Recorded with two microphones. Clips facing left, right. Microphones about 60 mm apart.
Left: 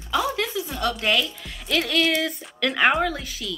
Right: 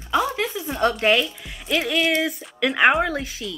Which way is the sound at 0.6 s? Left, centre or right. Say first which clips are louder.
Right 5 dB; right.